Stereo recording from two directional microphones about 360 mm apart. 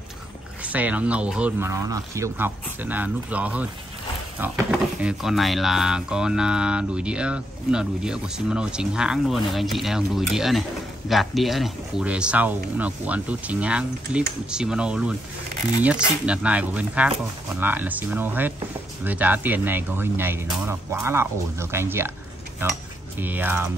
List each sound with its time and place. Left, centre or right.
0.6 s speech: centre